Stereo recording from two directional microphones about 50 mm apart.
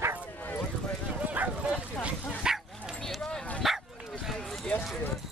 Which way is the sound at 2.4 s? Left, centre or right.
Centre.